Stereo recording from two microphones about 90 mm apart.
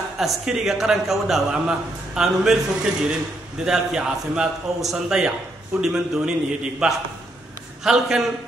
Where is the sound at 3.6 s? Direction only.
5° right (ahead or behind).